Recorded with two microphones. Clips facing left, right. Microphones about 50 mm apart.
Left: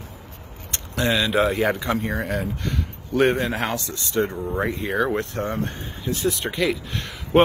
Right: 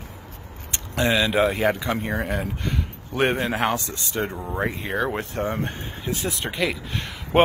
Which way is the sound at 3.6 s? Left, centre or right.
Right.